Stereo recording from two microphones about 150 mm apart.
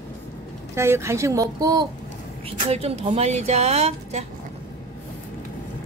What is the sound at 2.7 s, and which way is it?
Speech, 40° right (ahead or behind).